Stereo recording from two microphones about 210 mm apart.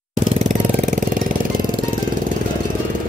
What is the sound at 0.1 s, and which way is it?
Jackhammer, 35° right (ahead or behind).